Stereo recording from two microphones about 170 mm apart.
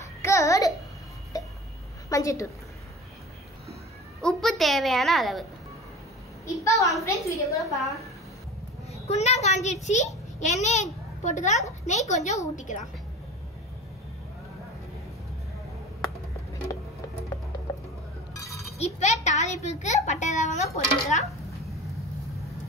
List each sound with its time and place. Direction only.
0.2 s babbling: 20° left (ahead or behind)
1.3 s a sound: 20° left (ahead or behind)
2.0 s a woman's voice: 20° left (ahead or behind)
4.2 s a child's voice: 5° left (ahead or behind)
6.4 s a woman's voice: 20° left (ahead or behind)
7.7 s a child's voice: centre (ahead or behind)
8.9 s a woman's voice: 40° left (ahead or behind)
18.3 s a sound: 20° left (ahead or behind)
18.8 s a child's voice: 40° left (ahead or behind)